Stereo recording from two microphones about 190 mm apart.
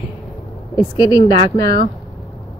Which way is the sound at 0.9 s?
20° left (ahead or behind).